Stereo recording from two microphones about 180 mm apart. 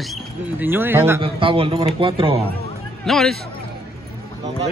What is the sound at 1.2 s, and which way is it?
A man's voice, 30° right (ahead or behind).